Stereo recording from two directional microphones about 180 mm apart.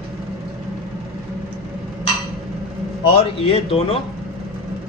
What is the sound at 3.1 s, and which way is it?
Speech, 30° left (ahead or behind).